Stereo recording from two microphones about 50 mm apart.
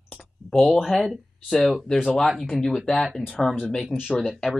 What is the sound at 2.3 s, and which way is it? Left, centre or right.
Speech, centre.